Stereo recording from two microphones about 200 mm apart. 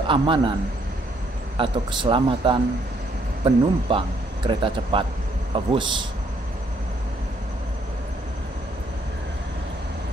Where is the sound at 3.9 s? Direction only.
25° right (ahead or behind).